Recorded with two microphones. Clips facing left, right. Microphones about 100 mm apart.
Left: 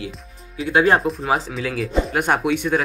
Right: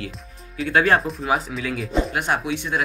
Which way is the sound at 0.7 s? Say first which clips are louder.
Left 2 dB; 25° left (ahead or behind).